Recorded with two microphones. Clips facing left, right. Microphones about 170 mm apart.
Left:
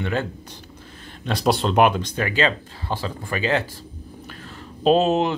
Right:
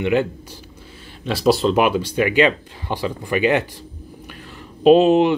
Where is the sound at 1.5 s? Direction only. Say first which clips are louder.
Right 2 dB; centre (ahead or behind).